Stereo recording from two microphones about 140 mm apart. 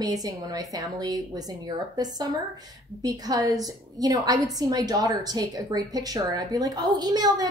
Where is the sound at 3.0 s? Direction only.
25° right (ahead or behind).